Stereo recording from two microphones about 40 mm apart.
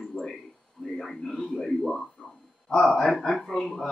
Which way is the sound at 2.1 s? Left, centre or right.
Centre.